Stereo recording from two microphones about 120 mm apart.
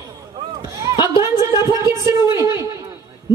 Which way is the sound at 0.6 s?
25° right (ahead or behind).